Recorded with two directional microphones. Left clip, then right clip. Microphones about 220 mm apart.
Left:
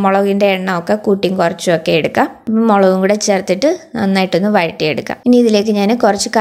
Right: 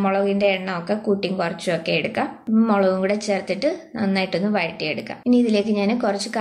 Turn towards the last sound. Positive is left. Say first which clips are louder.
# left 10 dB
turn(degrees=45)  # may be behind; listen again after turning